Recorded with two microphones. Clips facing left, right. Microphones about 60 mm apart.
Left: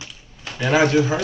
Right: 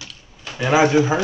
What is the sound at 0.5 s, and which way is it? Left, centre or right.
Speech, centre.